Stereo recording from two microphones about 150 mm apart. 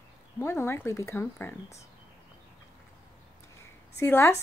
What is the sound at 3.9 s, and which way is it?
Speech, 15° left (ahead or behind).